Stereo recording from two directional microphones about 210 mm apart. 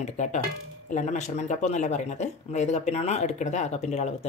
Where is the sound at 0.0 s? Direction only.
35° left (ahead or behind).